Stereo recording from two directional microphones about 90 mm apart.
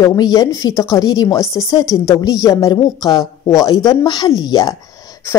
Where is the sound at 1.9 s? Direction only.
50° left (ahead or behind).